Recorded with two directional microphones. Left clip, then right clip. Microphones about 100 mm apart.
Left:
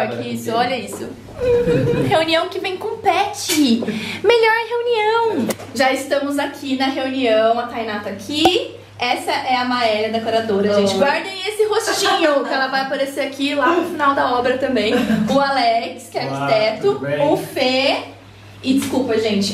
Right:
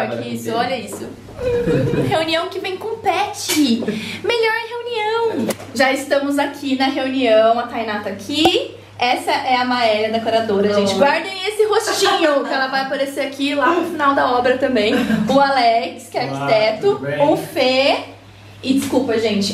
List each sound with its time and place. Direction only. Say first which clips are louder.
0.2 s a woman's voice: left 1 dB; 15° left (ahead or behind)
6.0 s a woman's voice: right 2 dB; 15° right (ahead or behind)